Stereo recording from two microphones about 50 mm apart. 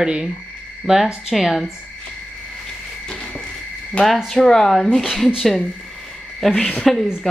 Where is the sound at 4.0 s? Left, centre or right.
Left.